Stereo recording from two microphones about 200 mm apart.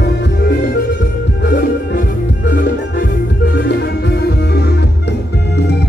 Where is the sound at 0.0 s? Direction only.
55° left (ahead or behind).